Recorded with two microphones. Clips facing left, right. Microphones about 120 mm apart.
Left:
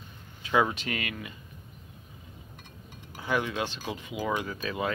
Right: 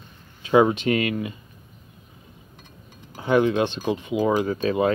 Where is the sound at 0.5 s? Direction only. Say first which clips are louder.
Right 9 dB; 25° right (ahead or behind).